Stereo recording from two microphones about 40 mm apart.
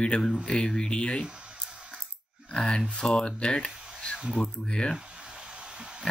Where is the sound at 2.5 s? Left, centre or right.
Left.